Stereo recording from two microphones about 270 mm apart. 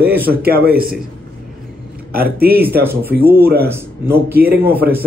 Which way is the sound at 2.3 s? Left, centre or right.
Right.